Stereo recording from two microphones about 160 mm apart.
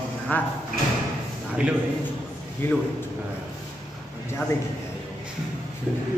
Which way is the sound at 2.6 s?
15° left (ahead or behind).